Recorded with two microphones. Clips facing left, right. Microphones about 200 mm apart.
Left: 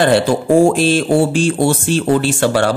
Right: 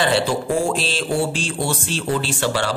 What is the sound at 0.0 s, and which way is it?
Speech, 50° left (ahead or behind).